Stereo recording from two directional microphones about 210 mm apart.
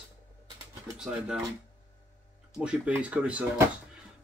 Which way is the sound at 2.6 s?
5° right (ahead or behind).